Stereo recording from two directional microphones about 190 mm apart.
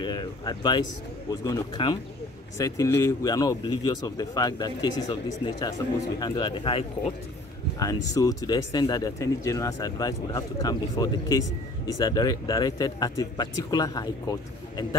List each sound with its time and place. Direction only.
0.0 s speech: 25° left (ahead or behind)
7.8 s speech: 20° left (ahead or behind)